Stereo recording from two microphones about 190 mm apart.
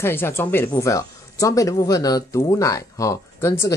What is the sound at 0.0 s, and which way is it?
A woman's voice, 10° left (ahead or behind).